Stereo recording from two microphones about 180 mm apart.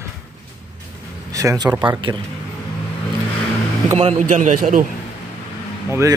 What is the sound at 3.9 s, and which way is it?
Speech, 35° right (ahead or behind).